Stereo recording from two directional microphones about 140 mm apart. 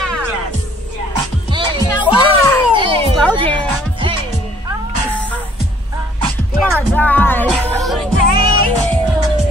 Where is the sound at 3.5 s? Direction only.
10° left (ahead or behind).